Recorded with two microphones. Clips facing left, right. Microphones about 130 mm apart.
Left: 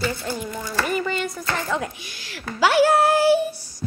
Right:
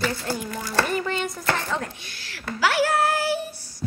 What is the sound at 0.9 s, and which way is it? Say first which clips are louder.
A child's voice: left 1 dB; 5° left (ahead or behind).